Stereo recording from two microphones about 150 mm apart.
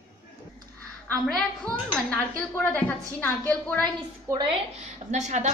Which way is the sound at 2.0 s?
10° left (ahead or behind).